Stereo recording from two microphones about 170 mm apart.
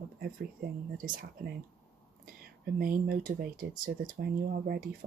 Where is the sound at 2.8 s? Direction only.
60° right (ahead or behind).